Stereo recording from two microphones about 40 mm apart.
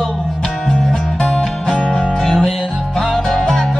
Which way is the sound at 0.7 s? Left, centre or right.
Centre.